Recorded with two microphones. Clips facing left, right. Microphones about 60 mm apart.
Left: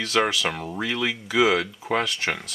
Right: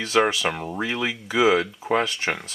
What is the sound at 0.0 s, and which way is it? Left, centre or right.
Speech, centre.